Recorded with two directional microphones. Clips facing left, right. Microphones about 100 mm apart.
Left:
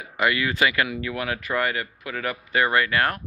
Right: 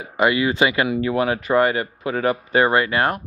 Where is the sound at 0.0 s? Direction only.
25° right (ahead or behind).